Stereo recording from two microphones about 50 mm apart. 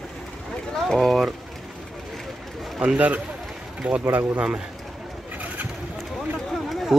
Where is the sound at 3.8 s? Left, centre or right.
Right.